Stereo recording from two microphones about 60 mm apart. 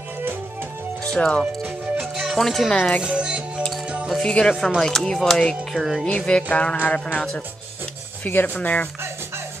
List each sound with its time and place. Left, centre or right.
1.1 s speech: centre
2.0 s music: centre
2.3 s speech: centre
2.7 s music: centre
3.0 s music: centre
4.2 s speech: centre
4.6 s speech: centre
5.8 s speech: centre
6.0 s music: centre
6.8 s speech: left
8.2 s speech: left
8.5 s music: left